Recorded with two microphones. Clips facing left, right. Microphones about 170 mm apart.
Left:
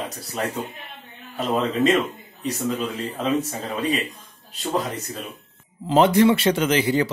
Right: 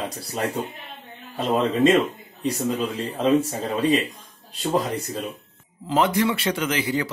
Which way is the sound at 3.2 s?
30° right (ahead or behind).